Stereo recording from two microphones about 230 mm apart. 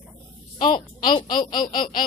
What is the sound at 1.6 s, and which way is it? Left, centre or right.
Speech, left.